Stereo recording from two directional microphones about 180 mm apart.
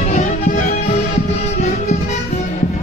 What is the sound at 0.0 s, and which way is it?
Music, 45° left (ahead or behind).